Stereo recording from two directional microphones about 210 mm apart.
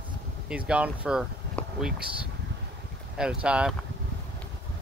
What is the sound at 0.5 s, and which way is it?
Speech, 5° right (ahead or behind).